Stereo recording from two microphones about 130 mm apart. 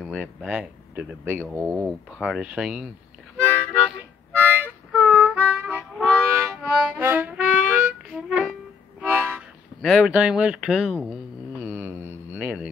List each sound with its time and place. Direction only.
0.0 s speech: 5° right (ahead or behind)
2.1 s speech: centre (ahead or behind)
3.3 s harmonica: 10° left (ahead or behind)
4.4 s harmonica: 15° right (ahead or behind)
4.9 s harmonica: 5° right (ahead or behind)
5.9 s harmonica: centre (ahead or behind)
6.3 s harmonica: 20° right (ahead or behind)
6.6 s harmonica: 10° right (ahead or behind)
9.0 s music: 15° right (ahead or behind)
9.8 s speech: centre (ahead or behind)
11.7 s a sound: 20° right (ahead or behind)